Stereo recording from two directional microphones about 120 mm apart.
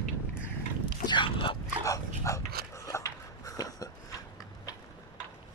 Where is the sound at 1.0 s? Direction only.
45° left (ahead or behind).